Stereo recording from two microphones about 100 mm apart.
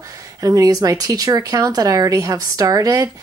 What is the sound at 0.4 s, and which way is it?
A woman's voice, 35° right (ahead or behind).